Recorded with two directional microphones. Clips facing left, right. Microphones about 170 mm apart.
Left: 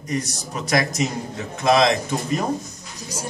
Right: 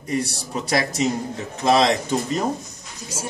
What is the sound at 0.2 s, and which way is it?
Speech, 30° right (ahead or behind).